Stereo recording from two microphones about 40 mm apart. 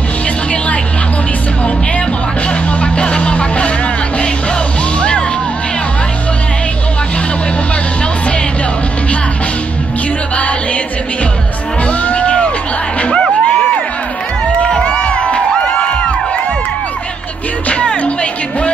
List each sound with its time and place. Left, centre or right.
2.8 s music: left
11.9 s music: left
14.7 s crowd: left
17.6 s music: left